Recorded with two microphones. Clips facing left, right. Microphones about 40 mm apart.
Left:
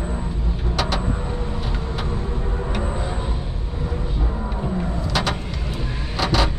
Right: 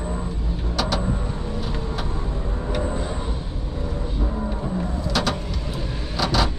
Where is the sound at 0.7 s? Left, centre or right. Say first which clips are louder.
Even; left.